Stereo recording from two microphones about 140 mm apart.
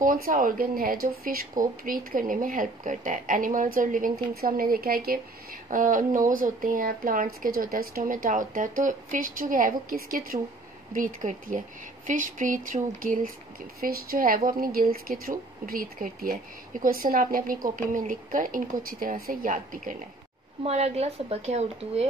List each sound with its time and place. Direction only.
0.0 s speech: 80° right
5.7 s speech: 70° right (ahead or behind); by 10.4 s 90° right
10.9 s speech: 80° right
13.7 s speech: 90° right
17.9 s speech: 70° right (ahead or behind)
20.6 s speech: 50° right (ahead or behind)